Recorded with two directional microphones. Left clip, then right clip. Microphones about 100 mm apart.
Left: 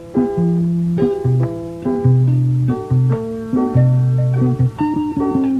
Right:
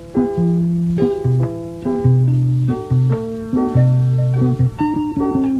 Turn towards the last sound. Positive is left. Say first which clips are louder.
# even
turn(degrees=25)  # may be behind; listen again after turning